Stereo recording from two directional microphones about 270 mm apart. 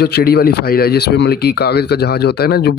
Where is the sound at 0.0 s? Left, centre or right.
Left.